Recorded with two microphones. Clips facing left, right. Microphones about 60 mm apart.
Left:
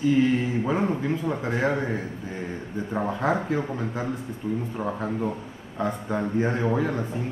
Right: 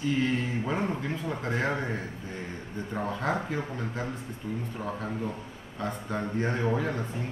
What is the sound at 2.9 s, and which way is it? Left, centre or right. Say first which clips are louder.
Speech: left 5 dB; centre.